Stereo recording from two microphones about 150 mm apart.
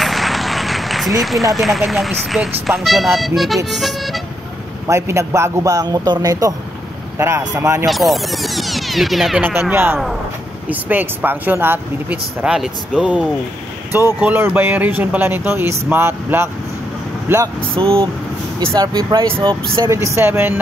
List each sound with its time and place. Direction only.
0.0 s speech: centre (ahead or behind)
4.8 s a man's voice: 20° right (ahead or behind)
7.8 s speech: centre (ahead or behind)
9.4 s speech: 15° right (ahead or behind)
17.7 s a man's voice: 35° right (ahead or behind); by 20.5 s 15° right (ahead or behind)